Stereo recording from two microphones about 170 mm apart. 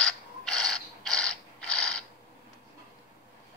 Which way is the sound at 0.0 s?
5° left (ahead or behind).